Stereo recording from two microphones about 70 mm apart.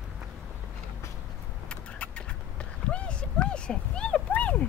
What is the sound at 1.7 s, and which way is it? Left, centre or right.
Clip-clop, centre.